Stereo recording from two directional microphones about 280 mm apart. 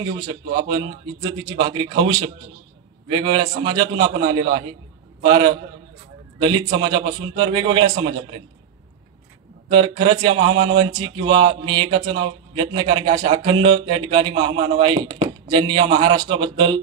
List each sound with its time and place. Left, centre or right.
0.0 s speech: centre
9.7 s speech: centre